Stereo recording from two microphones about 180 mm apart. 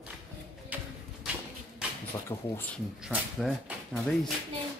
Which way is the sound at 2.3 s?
15° left (ahead or behind).